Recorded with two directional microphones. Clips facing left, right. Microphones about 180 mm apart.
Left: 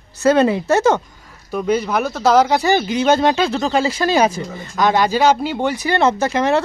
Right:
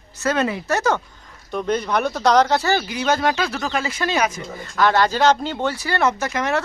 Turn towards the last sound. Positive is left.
turn(degrees=30)  # may be behind; listen again after turning